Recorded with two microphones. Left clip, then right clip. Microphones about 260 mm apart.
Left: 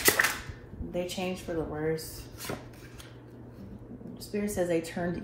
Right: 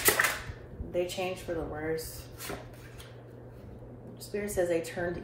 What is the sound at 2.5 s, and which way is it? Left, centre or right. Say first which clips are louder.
Speech: left 2 dB; left.